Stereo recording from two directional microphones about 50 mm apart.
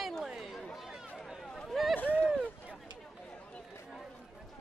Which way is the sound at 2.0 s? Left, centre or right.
Left.